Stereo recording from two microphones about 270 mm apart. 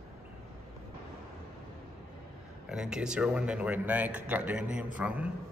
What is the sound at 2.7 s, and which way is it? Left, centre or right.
Speech, centre.